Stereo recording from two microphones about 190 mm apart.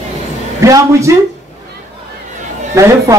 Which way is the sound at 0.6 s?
15° right (ahead or behind).